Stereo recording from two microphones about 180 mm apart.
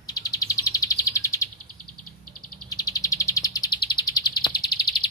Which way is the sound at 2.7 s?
20° left (ahead or behind).